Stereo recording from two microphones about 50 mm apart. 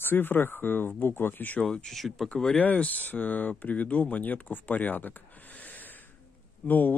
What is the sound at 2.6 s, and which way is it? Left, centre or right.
Speech, left.